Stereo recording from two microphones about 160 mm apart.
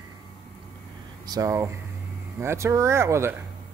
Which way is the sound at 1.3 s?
20° right (ahead or behind).